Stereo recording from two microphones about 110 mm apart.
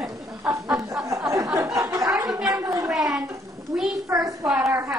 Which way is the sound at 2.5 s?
25° right (ahead or behind).